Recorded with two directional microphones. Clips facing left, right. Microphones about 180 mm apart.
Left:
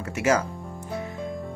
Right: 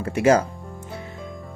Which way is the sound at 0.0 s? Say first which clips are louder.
Right 5 dB; 30° right (ahead or behind).